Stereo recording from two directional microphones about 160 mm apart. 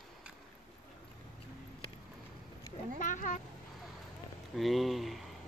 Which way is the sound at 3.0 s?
50° left (ahead or behind).